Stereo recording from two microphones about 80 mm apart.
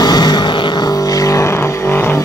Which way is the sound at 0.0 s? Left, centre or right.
Left.